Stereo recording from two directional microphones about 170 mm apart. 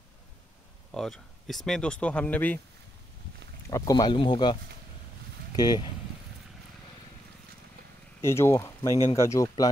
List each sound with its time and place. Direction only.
0.9 s speech: centre (ahead or behind)
3.7 s speech: 20° left (ahead or behind)
5.6 s speech: 25° left (ahead or behind)
8.2 s speech: 15° left (ahead or behind)